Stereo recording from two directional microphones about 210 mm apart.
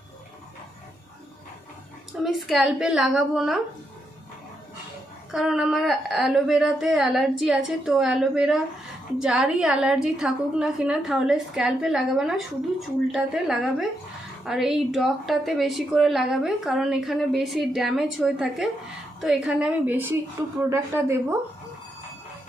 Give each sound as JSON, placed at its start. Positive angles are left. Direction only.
{"t": 2.2, "sound": "a woman's voice", "side_deg": 0}
{"t": 5.3, "sound": "a woman's voice", "side_deg": 0}